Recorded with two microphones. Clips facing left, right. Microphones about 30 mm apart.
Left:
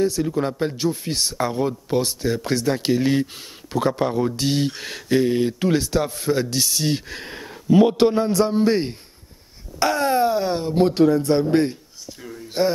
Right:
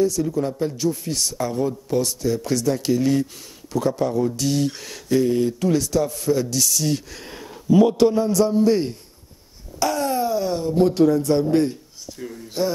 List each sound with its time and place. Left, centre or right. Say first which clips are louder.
0.0 s a man's voice: even; left
12.2 s speech: right 3 dB; centre